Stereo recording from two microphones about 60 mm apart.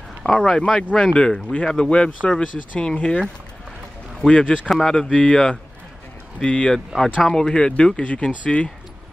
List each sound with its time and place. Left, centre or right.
0.2 s speech: centre
4.3 s speech: centre
4.6 s speech: centre